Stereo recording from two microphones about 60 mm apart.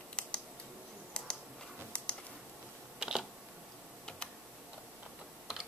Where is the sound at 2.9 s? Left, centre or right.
Centre.